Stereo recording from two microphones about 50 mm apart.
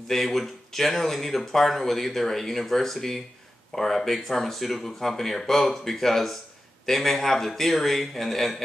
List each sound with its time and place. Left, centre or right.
0.1 s speech: centre